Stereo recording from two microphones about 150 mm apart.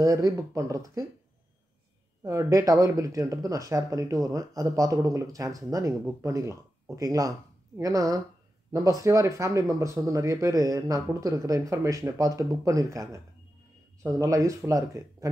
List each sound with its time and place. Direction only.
0.0 s speech: 25° right (ahead or behind)
2.2 s speech: 20° right (ahead or behind)